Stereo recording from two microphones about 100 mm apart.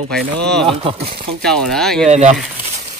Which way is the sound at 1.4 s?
5° left (ahead or behind).